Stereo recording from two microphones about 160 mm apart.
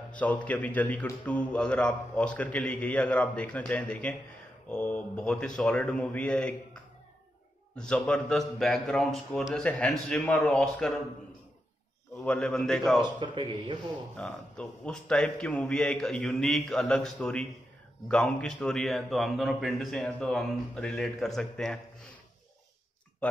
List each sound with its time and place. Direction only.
0.1 s a man's voice: 10° left (ahead or behind)
12.2 s a man's voice: 5° left (ahead or behind)
13.0 s a man's voice: 30° right (ahead or behind)
14.1 s a man's voice: 5° left (ahead or behind)